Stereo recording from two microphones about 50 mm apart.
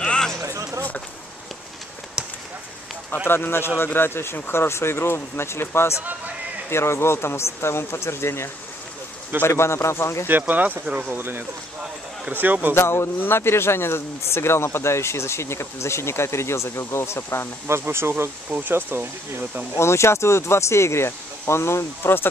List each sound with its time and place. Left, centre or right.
0.0 s a sound: centre
0.4 s a sound: right
2.2 s a sound: centre
3.3 s speech: left
9.5 s a man's voice: left
10.4 s speech: right
12.7 s speech: left
17.6 s speech: right
18.5 s speech: right
19.8 s speech: left